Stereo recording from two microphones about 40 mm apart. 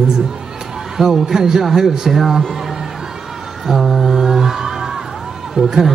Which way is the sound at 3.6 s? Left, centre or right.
Centre.